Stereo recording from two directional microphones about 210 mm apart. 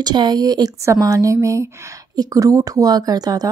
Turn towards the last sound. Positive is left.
turn(degrees=-20)  # may be behind; listen again after turning